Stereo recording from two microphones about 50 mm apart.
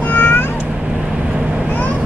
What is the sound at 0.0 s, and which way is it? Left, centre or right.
Meow, left.